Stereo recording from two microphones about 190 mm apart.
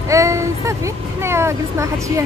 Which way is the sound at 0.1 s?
15° right (ahead or behind).